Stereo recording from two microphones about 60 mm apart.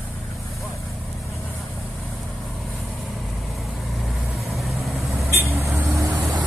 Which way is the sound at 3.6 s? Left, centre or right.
Centre.